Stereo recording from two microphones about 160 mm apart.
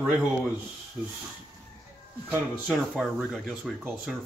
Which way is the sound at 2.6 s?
5° left (ahead or behind).